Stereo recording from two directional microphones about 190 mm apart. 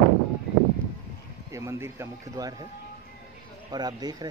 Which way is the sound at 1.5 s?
15° right (ahead or behind).